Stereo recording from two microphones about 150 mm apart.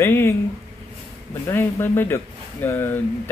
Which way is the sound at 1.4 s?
15° left (ahead or behind).